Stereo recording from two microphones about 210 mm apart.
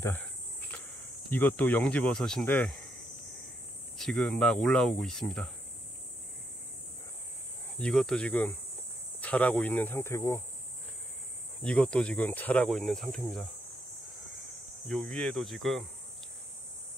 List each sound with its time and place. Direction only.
0.0 s cricket: 10° left (ahead or behind)
1.3 s speech: 10° left (ahead or behind)
4.0 s speech: 5° left (ahead or behind)
7.8 s speech: centre (ahead or behind)
11.6 s speech: 5° left (ahead or behind)
14.9 s speech: 5° left (ahead or behind)